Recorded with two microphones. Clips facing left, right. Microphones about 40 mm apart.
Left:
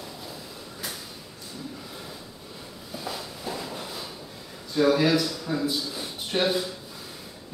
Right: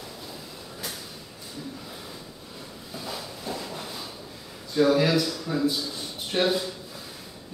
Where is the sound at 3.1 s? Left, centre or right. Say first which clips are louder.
Left 1 dB; centre.